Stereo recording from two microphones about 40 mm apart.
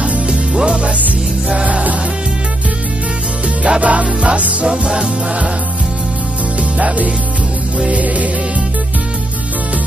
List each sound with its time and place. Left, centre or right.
0.3 s music: right
1.7 s music: right
3.6 s music: right
7.9 s music: right